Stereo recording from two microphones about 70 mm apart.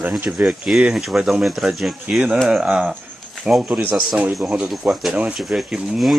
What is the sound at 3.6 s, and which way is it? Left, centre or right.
Speech, right.